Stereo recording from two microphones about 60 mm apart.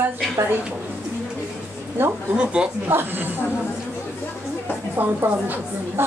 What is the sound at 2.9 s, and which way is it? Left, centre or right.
Speech, right.